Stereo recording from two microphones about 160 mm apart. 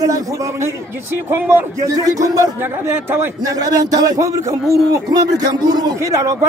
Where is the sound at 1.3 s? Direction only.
15° right (ahead or behind).